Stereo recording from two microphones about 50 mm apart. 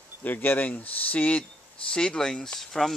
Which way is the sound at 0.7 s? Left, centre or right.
Left.